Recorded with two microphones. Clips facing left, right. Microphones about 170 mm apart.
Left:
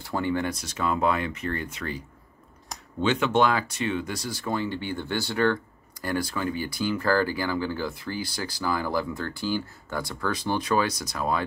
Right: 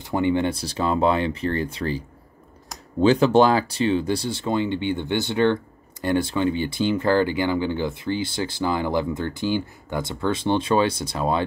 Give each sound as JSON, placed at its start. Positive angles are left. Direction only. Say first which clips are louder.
{"t": 0.0, "sound": "speech", "louder": "right 6 dB", "side_deg": -20}